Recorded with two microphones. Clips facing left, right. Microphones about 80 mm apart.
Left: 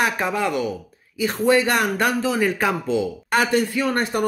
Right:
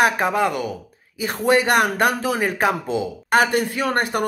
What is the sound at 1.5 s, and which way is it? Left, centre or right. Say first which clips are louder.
Speech: right 2 dB; right.